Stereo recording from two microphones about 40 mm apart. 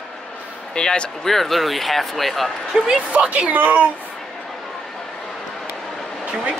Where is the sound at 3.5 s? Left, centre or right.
Right.